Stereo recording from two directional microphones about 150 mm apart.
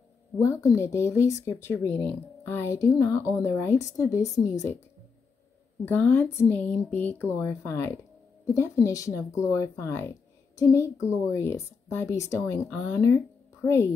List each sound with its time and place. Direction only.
0.4 s speech: 20° left (ahead or behind)
5.9 s speech: 10° left (ahead or behind)
13.7 s speech: 20° left (ahead or behind)